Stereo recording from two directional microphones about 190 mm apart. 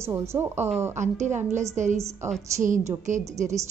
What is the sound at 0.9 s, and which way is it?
Speech, 40° right (ahead or behind).